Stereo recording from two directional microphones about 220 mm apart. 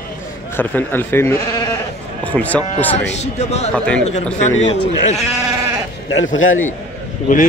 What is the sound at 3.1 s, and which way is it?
Speech, 30° left (ahead or behind).